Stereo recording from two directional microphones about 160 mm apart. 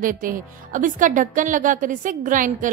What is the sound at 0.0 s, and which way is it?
A woman's voice, 60° right (ahead or behind).